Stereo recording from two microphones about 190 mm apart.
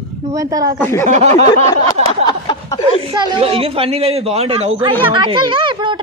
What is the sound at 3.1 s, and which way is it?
A woman's voice, 25° right (ahead or behind).